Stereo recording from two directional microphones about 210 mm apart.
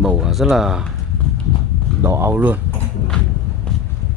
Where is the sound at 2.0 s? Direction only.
10° right (ahead or behind).